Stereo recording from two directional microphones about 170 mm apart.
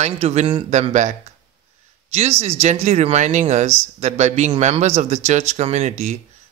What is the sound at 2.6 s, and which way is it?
Speech, 40° right (ahead or behind).